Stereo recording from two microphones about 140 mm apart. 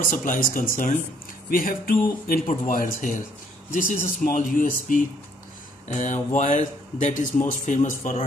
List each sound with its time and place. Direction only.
0.0 s speech: 70° left (ahead or behind)
1.5 s speech: 85° left
2.6 s speech: 70° left (ahead or behind)